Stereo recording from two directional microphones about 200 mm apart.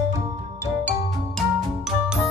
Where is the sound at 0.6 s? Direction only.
10° left (ahead or behind).